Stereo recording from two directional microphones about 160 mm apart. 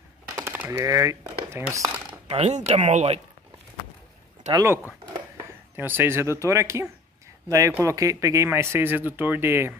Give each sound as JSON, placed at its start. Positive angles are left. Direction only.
{"t": 0.4, "sound": "speech", "side_deg": -15}
{"t": 2.2, "sound": "speech", "side_deg": -40}
{"t": 4.5, "sound": "speech", "side_deg": -20}
{"t": 5.8, "sound": "speech", "side_deg": -10}